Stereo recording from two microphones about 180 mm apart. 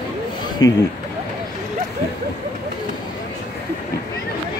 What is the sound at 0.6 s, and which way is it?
Speech, 20° left (ahead or behind).